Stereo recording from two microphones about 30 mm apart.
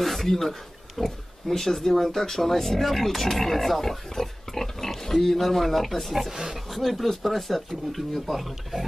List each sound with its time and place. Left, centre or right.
0.2 s speech: centre
6.3 s roaring cats: centre
6.7 s speech: centre